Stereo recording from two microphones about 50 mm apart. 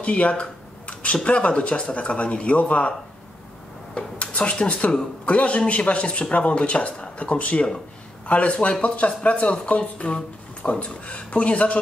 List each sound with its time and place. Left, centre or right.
0.0 s speech: left
3.9 s speech: left